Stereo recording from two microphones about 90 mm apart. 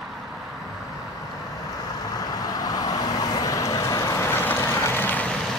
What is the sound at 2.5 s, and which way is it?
Vehicle, 45° left (ahead or behind).